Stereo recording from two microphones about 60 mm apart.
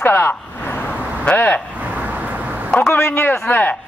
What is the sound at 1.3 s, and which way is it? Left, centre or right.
Speech, left.